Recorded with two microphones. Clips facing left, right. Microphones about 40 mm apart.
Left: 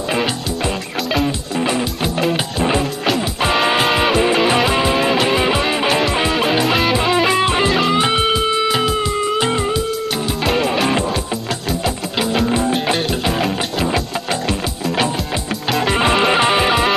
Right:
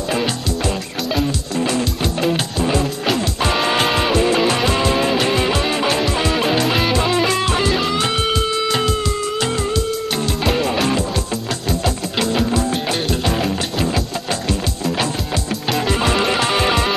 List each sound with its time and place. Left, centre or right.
1.2 s music: left
2.1 s music: centre
6.3 s music: centre
10.1 s music: centre
12.4 s music: centre
12.9 s music: centre
15.9 s music: left